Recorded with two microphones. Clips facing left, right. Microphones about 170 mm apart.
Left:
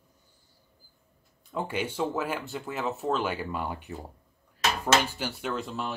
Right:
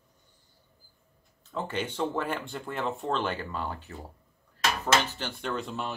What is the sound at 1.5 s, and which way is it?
Speech, 10° left (ahead or behind).